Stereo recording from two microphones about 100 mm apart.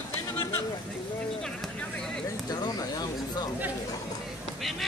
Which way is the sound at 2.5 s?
40° left (ahead or behind).